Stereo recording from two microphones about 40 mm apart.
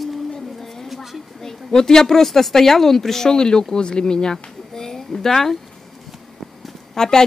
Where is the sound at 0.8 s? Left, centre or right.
Centre.